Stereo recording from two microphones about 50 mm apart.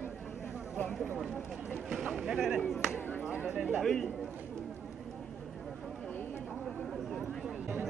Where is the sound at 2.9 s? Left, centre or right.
Left.